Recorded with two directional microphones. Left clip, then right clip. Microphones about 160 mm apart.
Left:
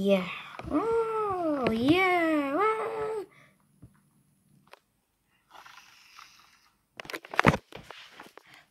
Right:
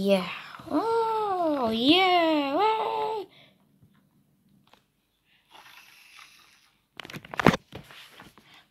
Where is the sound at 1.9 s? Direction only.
65° left (ahead or behind).